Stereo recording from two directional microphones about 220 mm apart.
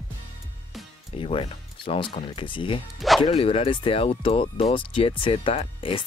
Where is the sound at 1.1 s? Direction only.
25° left (ahead or behind).